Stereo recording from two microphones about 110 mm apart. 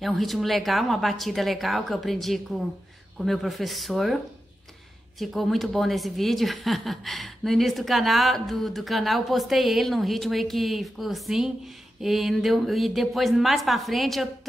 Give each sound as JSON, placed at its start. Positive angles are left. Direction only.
{"t": 0.0, "sound": "speech", "side_deg": 0}
{"t": 5.2, "sound": "speech", "side_deg": 0}